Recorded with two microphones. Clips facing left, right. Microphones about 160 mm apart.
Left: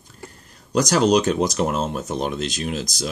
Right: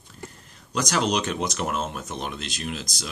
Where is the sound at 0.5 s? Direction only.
40° left (ahead or behind).